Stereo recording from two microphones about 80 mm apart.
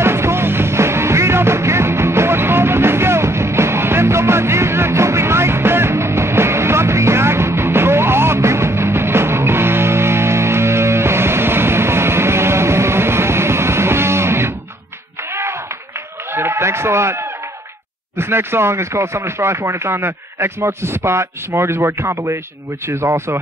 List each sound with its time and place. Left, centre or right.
0.0 s music: right
16.3 s a sound: right
18.1 s speech: right